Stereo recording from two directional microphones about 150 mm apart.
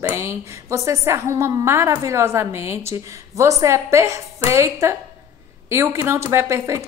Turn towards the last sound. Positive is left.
turn(degrees=-20)  # may be behind; listen again after turning